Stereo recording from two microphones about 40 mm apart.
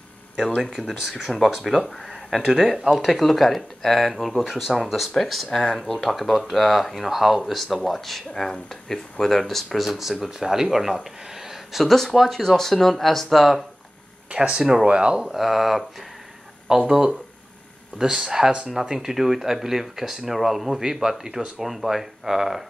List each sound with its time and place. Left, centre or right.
0.9 s speech: centre
7.6 s speech: centre
9.8 s speech: centre
11.2 s a sound: centre
12.1 s speech: centre
14.3 s speech: right
14.6 s speech: centre
14.9 s speech: right
15.3 s speech: centre
16.6 s speech: centre